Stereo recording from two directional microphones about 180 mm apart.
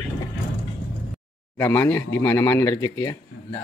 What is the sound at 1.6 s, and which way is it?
Speech, 15° left (ahead or behind).